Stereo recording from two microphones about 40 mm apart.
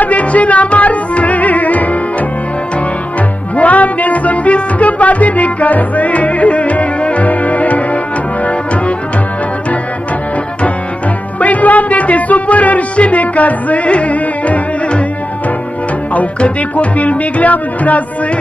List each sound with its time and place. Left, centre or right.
0.0 s music: left
3.5 s music: left
11.3 s music: left
16.3 s music: left